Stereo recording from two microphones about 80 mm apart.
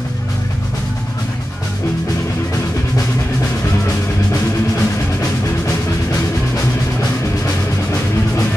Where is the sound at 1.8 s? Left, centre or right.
Left.